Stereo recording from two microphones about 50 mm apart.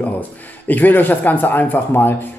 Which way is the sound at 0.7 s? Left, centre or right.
Left.